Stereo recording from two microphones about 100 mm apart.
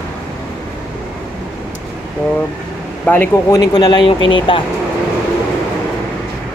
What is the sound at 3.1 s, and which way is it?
Speech, 20° left (ahead or behind).